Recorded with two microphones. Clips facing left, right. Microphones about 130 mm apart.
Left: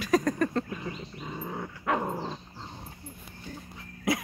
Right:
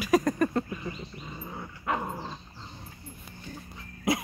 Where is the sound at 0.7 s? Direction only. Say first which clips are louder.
Even; 75° left (ahead or behind).